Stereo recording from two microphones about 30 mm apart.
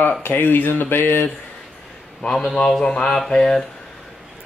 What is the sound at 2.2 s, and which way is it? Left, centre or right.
Speech, centre.